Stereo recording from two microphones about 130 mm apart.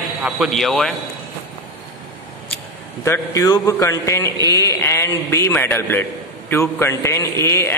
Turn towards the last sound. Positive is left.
turn(degrees=20)  # may be behind; listen again after turning